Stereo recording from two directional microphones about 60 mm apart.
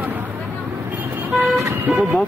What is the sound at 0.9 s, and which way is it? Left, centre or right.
Vehicle, right.